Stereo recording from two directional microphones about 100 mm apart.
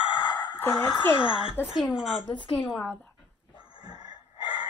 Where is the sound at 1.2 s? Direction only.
60° left (ahead or behind).